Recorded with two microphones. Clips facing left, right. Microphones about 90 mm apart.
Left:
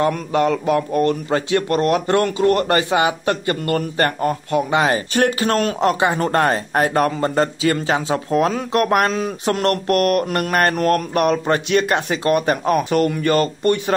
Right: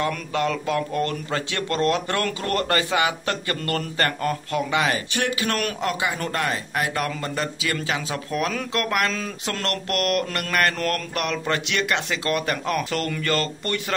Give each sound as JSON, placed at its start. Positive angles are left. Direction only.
{"t": 0.0, "sound": "speech", "side_deg": 25}
{"t": 5.1, "sound": "speech", "side_deg": 40}